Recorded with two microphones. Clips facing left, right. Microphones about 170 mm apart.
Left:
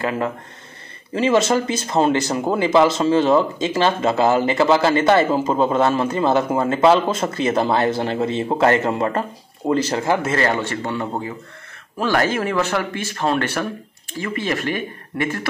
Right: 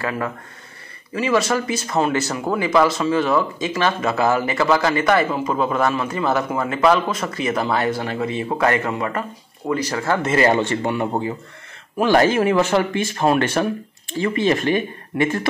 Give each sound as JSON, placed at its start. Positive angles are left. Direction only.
{"t": 0.0, "sound": "speech", "side_deg": 25}
{"t": 10.4, "sound": "speech", "side_deg": -20}